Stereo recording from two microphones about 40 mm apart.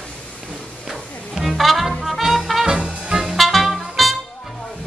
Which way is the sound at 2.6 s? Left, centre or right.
Right.